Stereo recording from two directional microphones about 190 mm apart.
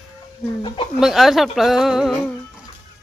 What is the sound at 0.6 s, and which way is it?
Speech, 30° left (ahead or behind).